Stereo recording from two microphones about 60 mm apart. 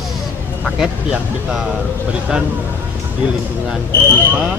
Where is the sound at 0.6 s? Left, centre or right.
Centre.